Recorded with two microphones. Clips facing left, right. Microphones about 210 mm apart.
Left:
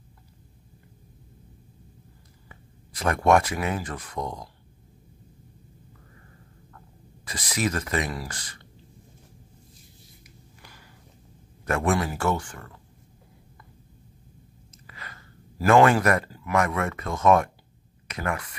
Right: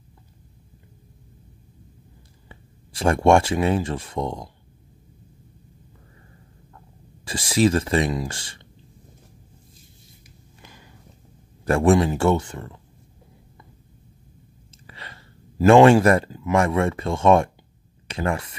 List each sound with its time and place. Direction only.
2.4 s speech: 30° right (ahead or behind)
7.2 s speech: 30° right (ahead or behind)
10.6 s walk: 20° right (ahead or behind)
11.6 s speech: 30° right (ahead or behind)
14.9 s speech: 30° right (ahead or behind)